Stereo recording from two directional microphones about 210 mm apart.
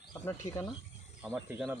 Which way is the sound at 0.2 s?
15° left (ahead or behind).